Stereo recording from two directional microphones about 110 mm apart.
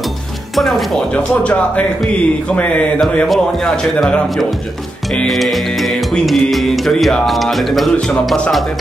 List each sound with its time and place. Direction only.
0.6 s speech: centre (ahead or behind)
5.1 s music: 5° left (ahead or behind)